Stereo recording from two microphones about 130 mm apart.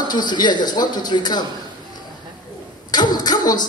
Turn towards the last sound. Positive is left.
turn(degrees=30)  # may be behind; listen again after turning